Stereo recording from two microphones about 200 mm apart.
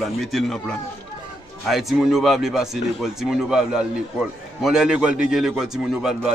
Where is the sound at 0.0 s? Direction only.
Centre (ahead or behind).